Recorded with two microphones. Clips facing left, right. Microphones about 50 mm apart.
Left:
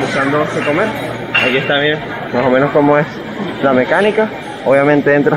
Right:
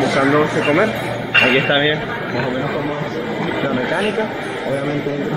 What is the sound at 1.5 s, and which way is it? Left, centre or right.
Speech, centre.